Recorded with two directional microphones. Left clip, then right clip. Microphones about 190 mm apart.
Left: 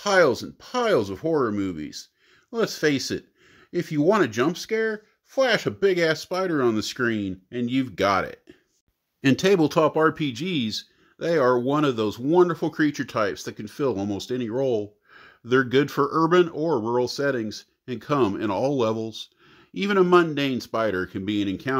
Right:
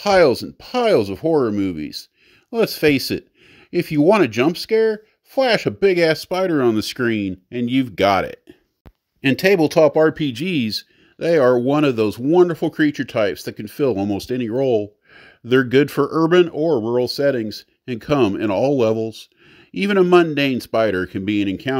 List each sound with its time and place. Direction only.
0.0 s speech: 40° right (ahead or behind)
9.2 s speech: 40° left (ahead or behind)
9.9 s speech: 25° right (ahead or behind)